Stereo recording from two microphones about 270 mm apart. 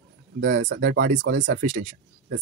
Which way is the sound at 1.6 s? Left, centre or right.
Right.